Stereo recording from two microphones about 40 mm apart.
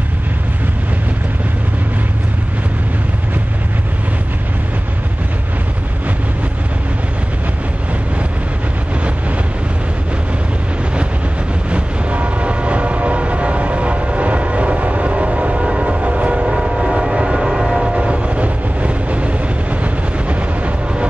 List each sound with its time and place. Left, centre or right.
11.7 s train: right
16.4 s train: centre
17.5 s train: centre
17.9 s train: right